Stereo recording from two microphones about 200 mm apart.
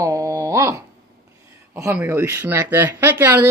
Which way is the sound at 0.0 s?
15° right (ahead or behind).